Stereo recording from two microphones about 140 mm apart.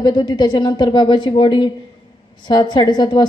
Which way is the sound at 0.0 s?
30° left (ahead or behind).